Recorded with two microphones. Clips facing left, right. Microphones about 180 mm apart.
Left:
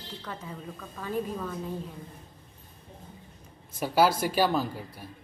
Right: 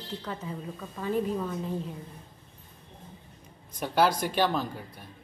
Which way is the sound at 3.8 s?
5° left (ahead or behind).